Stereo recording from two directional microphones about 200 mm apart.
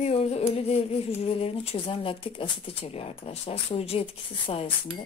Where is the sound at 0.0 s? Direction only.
30° left (ahead or behind).